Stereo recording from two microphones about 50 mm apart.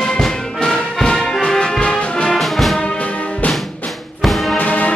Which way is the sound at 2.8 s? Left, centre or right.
Left.